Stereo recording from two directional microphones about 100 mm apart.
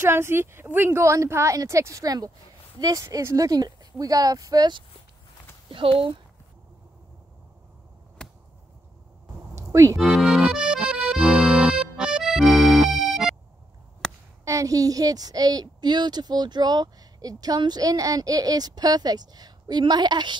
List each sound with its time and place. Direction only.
0.0 s a woman's voice: 25° right (ahead or behind); by 4.8 s 45° right (ahead or behind)
5.7 s speech: 65° right (ahead or behind)
8.2 s a sound: 10° left (ahead or behind)
9.6 s music: 30° right (ahead or behind)
9.9 s accordion: centre (ahead or behind)
14.0 s a sound: 5° left (ahead or behind)
14.4 s a woman's voice: 35° right (ahead or behind)